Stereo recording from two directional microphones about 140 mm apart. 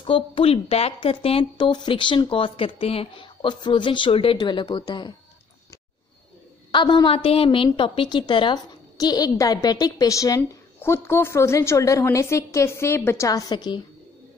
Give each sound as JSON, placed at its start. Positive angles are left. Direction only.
{"t": 0.0, "sound": "speech", "side_deg": 40}
{"t": 6.7, "sound": "a woman's voice", "side_deg": 35}